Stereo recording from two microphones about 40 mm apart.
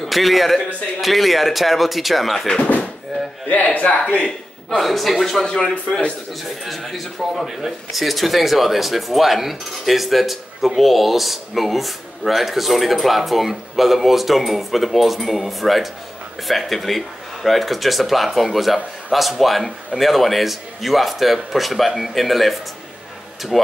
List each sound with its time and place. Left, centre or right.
0.0 s speech: centre
3.4 s speech: left
4.6 s speech: centre
6.6 s speech: centre